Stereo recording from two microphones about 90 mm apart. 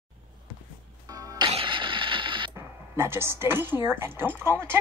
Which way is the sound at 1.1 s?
40° right (ahead or behind).